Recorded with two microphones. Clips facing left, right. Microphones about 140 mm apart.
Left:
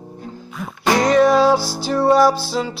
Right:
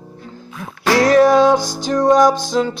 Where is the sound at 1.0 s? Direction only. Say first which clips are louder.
Right 3 dB; centre (ahead or behind).